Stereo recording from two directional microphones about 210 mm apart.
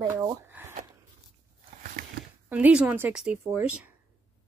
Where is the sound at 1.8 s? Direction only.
40° right (ahead or behind).